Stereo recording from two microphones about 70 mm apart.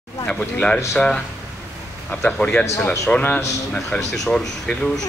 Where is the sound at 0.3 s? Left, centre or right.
Centre.